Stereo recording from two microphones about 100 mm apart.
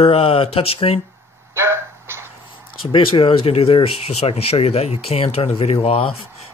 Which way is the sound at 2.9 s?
65° left (ahead or behind).